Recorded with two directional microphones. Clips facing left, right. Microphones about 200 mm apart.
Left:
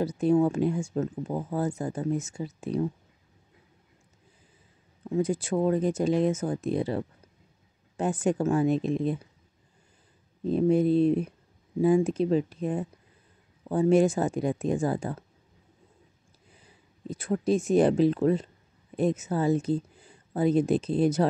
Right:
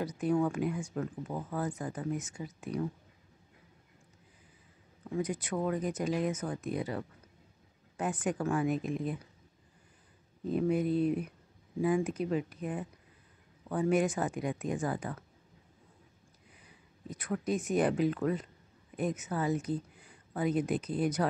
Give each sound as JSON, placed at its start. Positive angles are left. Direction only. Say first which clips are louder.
{"t": 0.0, "sound": "speech", "louder": "left 7 dB", "side_deg": 25}
{"t": 5.1, "sound": "speech", "louder": "left 7 dB", "side_deg": 30}
{"t": 10.4, "sound": "speech", "louder": "left 7 dB", "side_deg": 25}
{"t": 16.5, "sound": "speech", "louder": "left 3 dB", "side_deg": 30}